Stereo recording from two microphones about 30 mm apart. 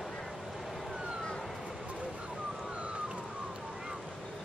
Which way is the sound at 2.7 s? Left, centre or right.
Right.